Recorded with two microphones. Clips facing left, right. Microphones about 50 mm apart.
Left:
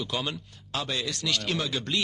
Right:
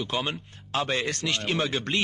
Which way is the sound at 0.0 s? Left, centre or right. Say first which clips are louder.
Right 2 dB; right.